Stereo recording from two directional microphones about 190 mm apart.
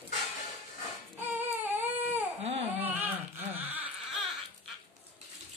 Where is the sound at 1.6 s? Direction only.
10° right (ahead or behind).